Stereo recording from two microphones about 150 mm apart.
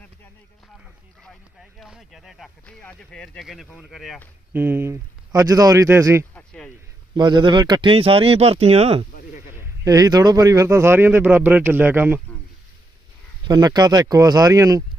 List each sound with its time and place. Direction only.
1.2 s speech: centre (ahead or behind)
2.6 s speech: 10° left (ahead or behind)
4.5 s a man's voice: 15° right (ahead or behind)
6.3 s a sound: 5° left (ahead or behind)
7.2 s speech: 30° right (ahead or behind)
9.8 s speech: 25° right (ahead or behind)
13.5 s a man's voice: 25° right (ahead or behind)